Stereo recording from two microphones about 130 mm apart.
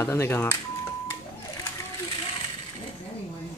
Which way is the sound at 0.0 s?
20° left (ahead or behind).